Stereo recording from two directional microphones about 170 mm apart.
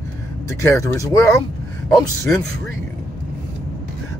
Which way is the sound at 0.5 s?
20° left (ahead or behind).